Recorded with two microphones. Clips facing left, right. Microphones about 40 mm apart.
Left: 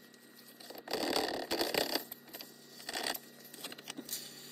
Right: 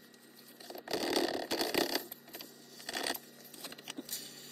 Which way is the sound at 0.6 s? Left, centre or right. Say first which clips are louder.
Right 1 dB; centre.